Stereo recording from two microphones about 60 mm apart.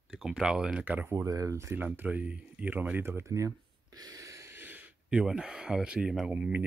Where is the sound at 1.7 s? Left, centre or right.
Right.